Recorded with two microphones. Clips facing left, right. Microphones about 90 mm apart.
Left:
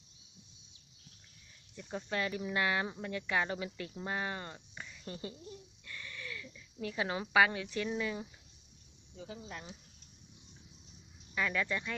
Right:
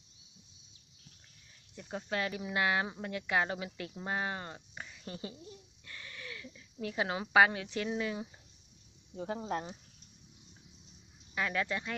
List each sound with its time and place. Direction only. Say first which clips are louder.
1.8 s speech: right 1 dB; 10° right (ahead or behind)
5.9 s a sound: left 1 dB; 20° right (ahead or behind)
7.0 s speech: right 2 dB; 20° right (ahead or behind)
9.1 s speech: right 10 dB; 50° right (ahead or behind)
11.3 s speech: even; 15° right (ahead or behind)